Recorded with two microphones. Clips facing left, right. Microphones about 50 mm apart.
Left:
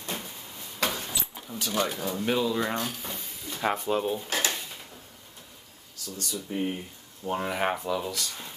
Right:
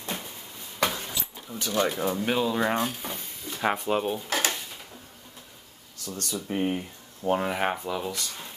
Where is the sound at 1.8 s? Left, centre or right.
Right.